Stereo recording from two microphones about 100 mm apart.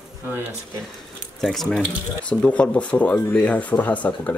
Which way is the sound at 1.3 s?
5° left (ahead or behind).